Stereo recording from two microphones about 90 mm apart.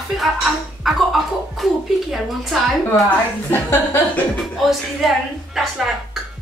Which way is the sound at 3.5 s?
25° left (ahead or behind).